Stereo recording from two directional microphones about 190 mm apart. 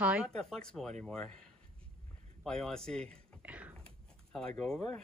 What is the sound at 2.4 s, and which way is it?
Speech, 5° left (ahead or behind).